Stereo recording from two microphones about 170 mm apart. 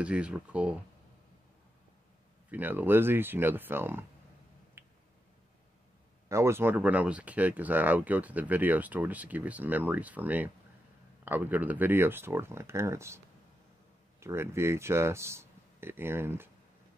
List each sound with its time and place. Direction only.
0.0 s speech: 5° right (ahead or behind)
2.5 s speech: 10° right (ahead or behind)
4.8 s finger snapping: 15° right (ahead or behind)
6.2 s speech: 15° right (ahead or behind)
14.2 s speech: 15° right (ahead or behind)